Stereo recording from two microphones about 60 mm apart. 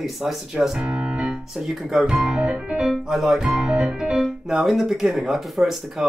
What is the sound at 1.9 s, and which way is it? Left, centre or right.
Speech, centre.